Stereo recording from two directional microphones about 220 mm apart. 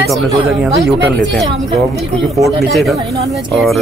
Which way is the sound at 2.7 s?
Centre (ahead or behind).